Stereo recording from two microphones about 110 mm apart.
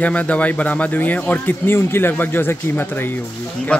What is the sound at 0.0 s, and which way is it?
A man's voice, 15° left (ahead or behind).